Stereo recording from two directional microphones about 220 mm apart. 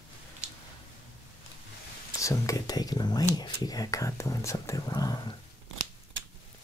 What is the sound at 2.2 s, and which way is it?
Speech, 15° left (ahead or behind).